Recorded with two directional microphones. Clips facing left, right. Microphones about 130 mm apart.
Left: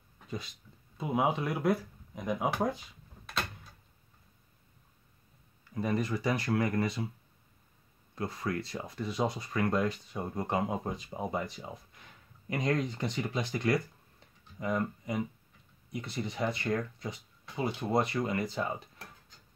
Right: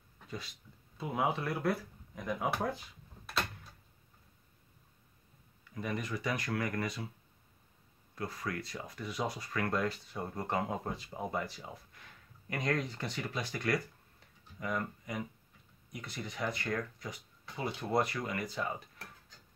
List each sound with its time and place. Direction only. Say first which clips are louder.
0.9 s speech: left 4 dB; 20° left (ahead or behind)
5.8 s speech: left 6 dB; 35° left (ahead or behind)
8.2 s speech: left 4 dB; 25° left (ahead or behind)